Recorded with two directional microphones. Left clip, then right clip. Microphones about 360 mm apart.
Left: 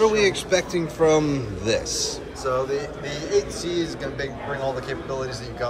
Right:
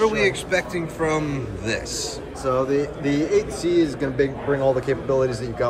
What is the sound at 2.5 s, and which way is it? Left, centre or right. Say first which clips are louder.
A man's voice: right 3 dB; centre.